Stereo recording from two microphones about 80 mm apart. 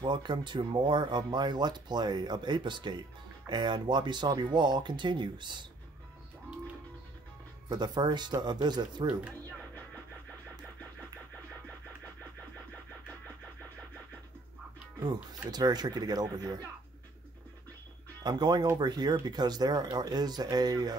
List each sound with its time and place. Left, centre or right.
0.0 s speech: right
7.7 s speech: right
15.5 s speech: right
18.2 s speech: right